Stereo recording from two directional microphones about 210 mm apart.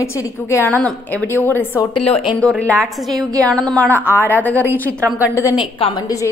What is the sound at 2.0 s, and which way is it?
Speech, 30° left (ahead or behind).